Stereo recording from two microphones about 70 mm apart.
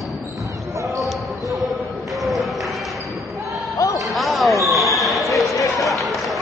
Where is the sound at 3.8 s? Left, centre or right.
Left.